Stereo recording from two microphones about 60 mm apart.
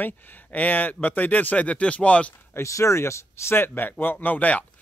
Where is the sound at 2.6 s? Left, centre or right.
Left.